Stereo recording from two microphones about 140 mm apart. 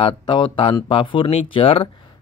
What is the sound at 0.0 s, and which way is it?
Speech, 35° left (ahead or behind).